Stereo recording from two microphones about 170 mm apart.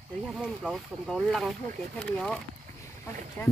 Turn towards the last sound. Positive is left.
turn(degrees=10)  # may be behind; listen again after turning